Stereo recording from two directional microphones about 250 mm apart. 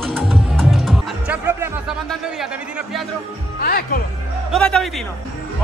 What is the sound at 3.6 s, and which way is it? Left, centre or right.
Music, left.